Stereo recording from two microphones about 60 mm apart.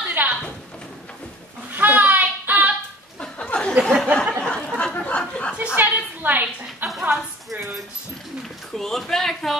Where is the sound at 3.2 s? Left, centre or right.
Centre.